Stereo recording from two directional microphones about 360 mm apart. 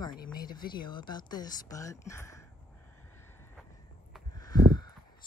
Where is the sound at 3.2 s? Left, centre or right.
Centre.